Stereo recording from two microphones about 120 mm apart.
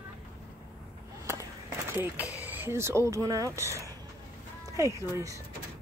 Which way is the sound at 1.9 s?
10° right (ahead or behind).